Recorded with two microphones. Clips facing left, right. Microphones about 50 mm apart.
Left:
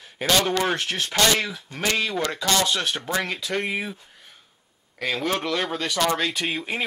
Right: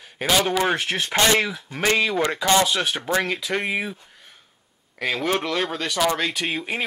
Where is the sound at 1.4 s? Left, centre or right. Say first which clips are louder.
Right 4 dB; centre.